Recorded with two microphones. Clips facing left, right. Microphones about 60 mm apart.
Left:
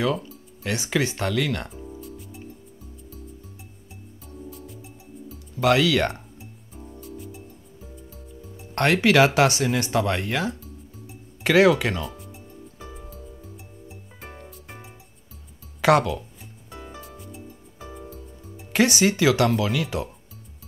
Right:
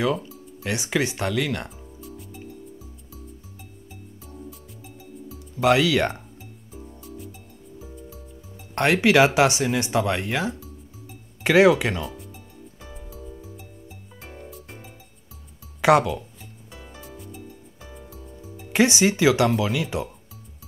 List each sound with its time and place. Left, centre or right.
0.0 s speech: centre
0.7 s speech: centre
2.0 s music: centre
4.5 s music: centre
5.6 s speech: centre
6.7 s music: centre
8.7 s speech: centre
15.8 s speech: centre
17.0 s music: centre
18.7 s speech: centre